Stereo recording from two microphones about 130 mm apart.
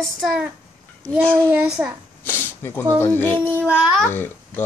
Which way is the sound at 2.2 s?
15° left (ahead or behind).